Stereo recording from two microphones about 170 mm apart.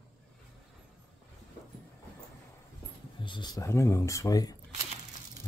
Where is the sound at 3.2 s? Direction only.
25° left (ahead or behind).